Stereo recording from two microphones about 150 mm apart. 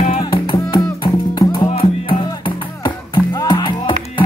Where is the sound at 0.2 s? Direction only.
35° left (ahead or behind).